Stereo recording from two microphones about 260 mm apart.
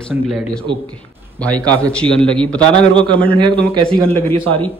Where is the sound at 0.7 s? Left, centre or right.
Centre.